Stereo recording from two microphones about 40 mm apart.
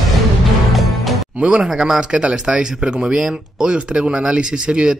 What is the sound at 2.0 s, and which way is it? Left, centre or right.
Speech, right.